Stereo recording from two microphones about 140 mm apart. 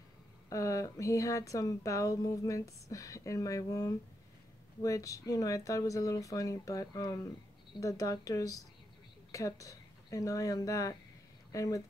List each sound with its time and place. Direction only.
0.5 s a woman's voice: 25° left (ahead or behind)